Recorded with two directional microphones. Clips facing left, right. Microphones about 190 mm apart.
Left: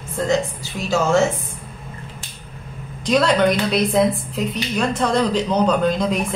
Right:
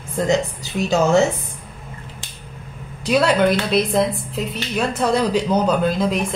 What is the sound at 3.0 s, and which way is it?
A woman's voice, 10° right (ahead or behind).